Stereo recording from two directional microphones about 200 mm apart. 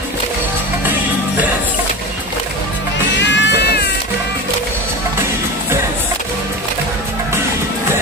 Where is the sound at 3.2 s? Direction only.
60° left (ahead or behind).